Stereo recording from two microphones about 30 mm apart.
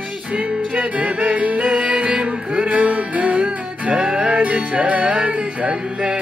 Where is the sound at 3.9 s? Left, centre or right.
Right.